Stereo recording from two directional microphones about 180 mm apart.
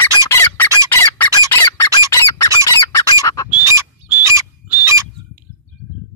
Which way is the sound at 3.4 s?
10° right (ahead or behind).